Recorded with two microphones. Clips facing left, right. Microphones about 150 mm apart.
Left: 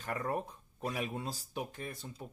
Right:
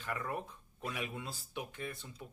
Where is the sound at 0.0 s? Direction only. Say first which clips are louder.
Left 4 dB; 40° left (ahead or behind).